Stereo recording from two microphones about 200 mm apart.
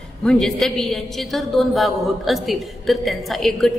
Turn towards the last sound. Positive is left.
turn(degrees=0)  # may be behind; listen again after turning